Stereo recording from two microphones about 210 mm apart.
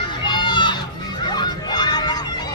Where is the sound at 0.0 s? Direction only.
20° left (ahead or behind).